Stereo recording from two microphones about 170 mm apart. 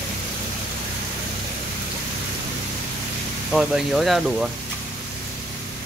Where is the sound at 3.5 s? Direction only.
Centre (ahead or behind).